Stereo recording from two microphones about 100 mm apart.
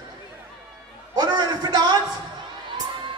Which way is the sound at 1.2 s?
45° right (ahead or behind).